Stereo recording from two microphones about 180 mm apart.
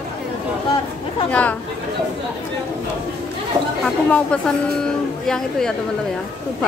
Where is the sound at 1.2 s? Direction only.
10° left (ahead or behind).